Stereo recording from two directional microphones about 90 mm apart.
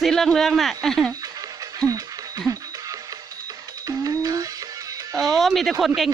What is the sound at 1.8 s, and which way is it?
Speech, 20° left (ahead or behind).